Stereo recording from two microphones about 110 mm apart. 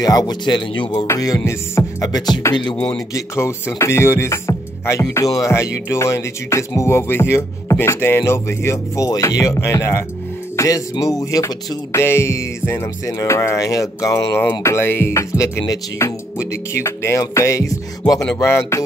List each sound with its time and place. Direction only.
0.0 s music: 35° left (ahead or behind)
1.0 s music: 30° left (ahead or behind)
2.5 s speech: 50° left (ahead or behind)
3.2 s speech: 25° left (ahead or behind)